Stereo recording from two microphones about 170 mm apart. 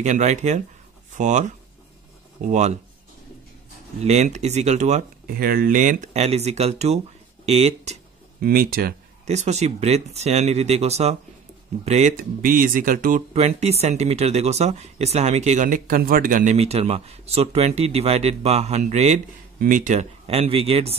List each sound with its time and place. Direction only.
0.0 s speech: 45° right (ahead or behind)
4.0 s speech: 40° right (ahead or behind)
5.2 s speech: 60° right (ahead or behind); by 8.0 s 40° right (ahead or behind)
8.4 s speech: 60° right (ahead or behind)
9.2 s speech: 40° right (ahead or behind)
16.5 s speech: 40° right (ahead or behind)
19.6 s speech: 50° right (ahead or behind); by 20.9 s 35° right (ahead or behind)